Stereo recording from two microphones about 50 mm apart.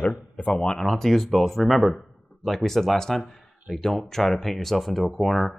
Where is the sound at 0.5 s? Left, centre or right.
Centre.